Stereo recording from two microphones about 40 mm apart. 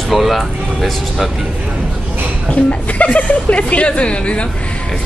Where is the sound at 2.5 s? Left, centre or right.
Left.